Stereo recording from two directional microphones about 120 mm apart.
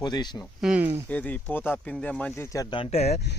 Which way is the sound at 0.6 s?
10° right (ahead or behind).